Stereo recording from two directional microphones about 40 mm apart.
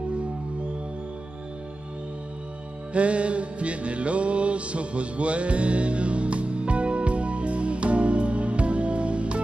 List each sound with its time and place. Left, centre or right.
2.9 s music: right